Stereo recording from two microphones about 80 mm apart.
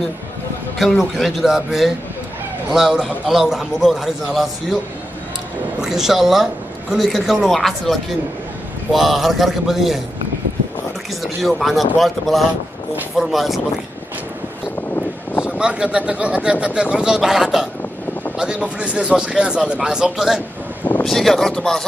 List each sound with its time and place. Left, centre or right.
0.7 s speech: centre
5.8 s speech: centre
11.2 s speech: centre
14.8 s vehicle: left
15.4 s speech: centre
21.0 s speech: centre